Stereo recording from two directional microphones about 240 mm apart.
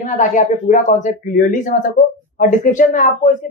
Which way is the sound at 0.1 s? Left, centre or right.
Left.